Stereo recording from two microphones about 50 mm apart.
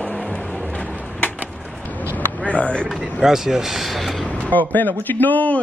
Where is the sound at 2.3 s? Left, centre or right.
Left.